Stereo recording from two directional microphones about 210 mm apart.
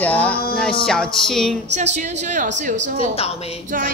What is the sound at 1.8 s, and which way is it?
A woman's voice, 35° right (ahead or behind).